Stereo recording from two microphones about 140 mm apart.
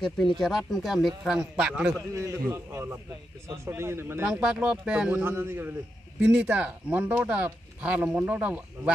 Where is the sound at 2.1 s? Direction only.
20° right (ahead or behind).